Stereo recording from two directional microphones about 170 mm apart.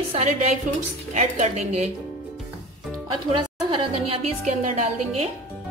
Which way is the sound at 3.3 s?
30° right (ahead or behind).